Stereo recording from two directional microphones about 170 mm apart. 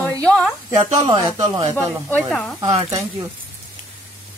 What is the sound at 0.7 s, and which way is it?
Speech, 30° right (ahead or behind).